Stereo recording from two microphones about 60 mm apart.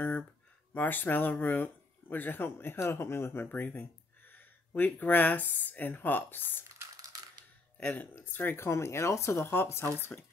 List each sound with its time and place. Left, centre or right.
0.7 s speech: left
3.4 s speech: left
7.7 s speech: left
8.6 s speech: left
10.1 s speech: left